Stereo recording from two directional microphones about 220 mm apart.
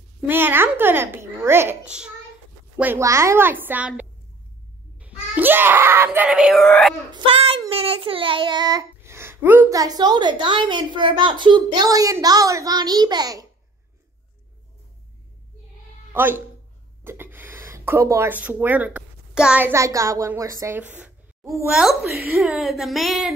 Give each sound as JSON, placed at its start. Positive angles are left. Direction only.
{"t": 0.3, "sound": "a child's voice", "side_deg": -10}
{"t": 7.1, "sound": "a sound", "side_deg": -25}
{"t": 7.7, "sound": "speech", "side_deg": -25}
{"t": 16.1, "sound": "speech", "side_deg": -10}